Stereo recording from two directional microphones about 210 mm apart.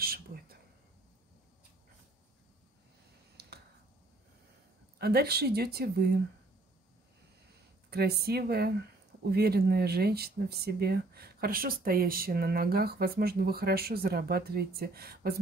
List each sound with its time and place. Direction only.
0.0 s a sound: 45° right (ahead or behind)
3.4 s finger snapping: 50° right (ahead or behind)
4.9 s speech: 50° right (ahead or behind)
7.9 s speech: 50° right (ahead or behind)